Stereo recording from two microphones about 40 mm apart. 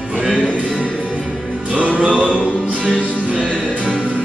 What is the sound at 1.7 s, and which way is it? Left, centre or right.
Music, right.